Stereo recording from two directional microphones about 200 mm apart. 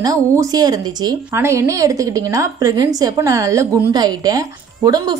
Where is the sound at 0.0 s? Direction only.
15° right (ahead or behind).